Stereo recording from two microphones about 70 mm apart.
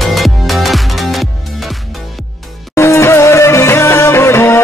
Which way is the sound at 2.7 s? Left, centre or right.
Left.